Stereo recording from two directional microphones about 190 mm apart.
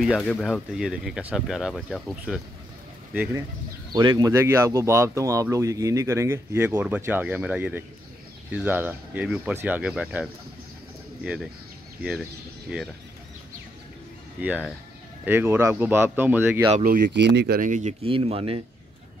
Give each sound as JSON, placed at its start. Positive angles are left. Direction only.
{"t": 0.0, "sound": "speech", "side_deg": 0}
{"t": 3.9, "sound": "speech", "side_deg": -20}
{"t": 14.4, "sound": "speech", "side_deg": -10}
{"t": 16.7, "sound": "speech", "side_deg": -40}
{"t": 17.0, "sound": "speech", "side_deg": -65}
{"t": 17.6, "sound": "speech", "side_deg": -40}
{"t": 18.0, "sound": "speech", "side_deg": -30}